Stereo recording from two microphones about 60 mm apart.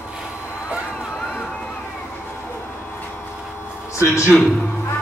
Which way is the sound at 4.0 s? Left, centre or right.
Left.